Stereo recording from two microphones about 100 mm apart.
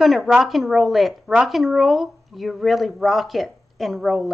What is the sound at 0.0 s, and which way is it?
A woman's voice, centre (ahead or behind).